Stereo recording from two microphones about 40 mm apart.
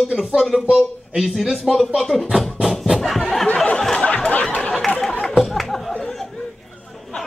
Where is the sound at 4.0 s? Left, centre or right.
Left.